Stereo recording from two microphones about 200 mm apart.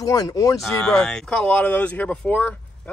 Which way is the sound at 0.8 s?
5° left (ahead or behind).